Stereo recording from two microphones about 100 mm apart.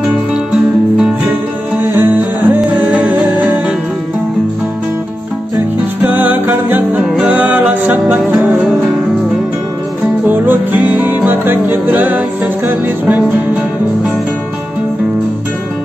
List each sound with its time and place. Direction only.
1.8 s music: 20° right (ahead or behind)
6.0 s music: 20° right (ahead or behind)
10.2 s music: 20° right (ahead or behind)